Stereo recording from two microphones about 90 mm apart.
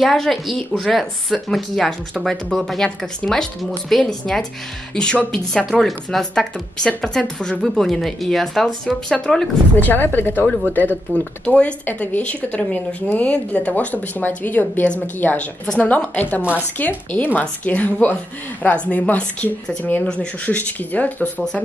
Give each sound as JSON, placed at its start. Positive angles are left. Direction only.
{"t": 0.0, "sound": "speech", "side_deg": 0}
{"t": 9.8, "sound": "speech", "side_deg": 20}